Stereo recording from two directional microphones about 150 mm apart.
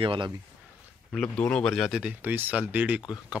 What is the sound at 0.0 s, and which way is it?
Speech, 35° right (ahead or behind).